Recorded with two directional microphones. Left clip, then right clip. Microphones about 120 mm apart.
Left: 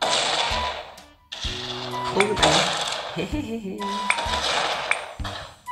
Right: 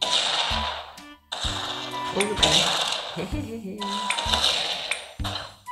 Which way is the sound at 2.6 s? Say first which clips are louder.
Right 1 dB; 5° right (ahead or behind).